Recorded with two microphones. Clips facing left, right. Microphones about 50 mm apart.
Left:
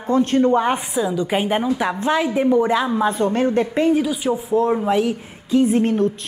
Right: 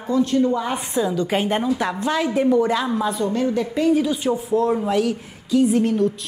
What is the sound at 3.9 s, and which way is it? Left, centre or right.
A woman's voice, centre.